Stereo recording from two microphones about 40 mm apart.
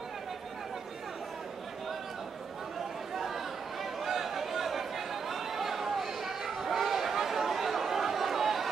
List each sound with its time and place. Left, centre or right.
4.0 s chatter: centre